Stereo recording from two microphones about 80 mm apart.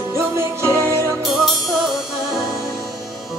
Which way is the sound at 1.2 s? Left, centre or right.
Centre.